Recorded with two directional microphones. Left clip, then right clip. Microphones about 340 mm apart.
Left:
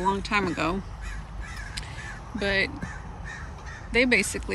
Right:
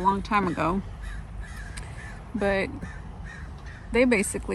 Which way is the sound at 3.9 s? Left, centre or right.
Centre.